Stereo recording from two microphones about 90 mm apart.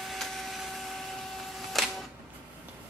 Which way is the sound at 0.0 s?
Centre (ahead or behind).